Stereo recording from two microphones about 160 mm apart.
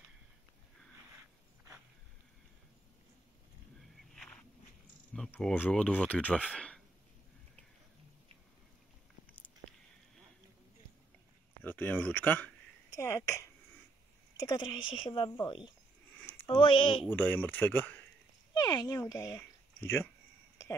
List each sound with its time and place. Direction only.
4.1 s walk: 5° left (ahead or behind)
5.1 s speech: 5° left (ahead or behind)
11.6 s speech: 10° left (ahead or behind); by 17.0 s 30° left (ahead or behind)
17.1 s speech: 10° left (ahead or behind)
18.5 s speech: 25° left (ahead or behind)